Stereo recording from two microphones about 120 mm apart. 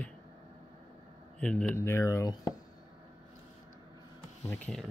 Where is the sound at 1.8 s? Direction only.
20° left (ahead or behind).